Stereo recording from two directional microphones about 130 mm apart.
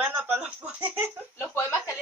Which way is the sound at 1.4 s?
15° left (ahead or behind).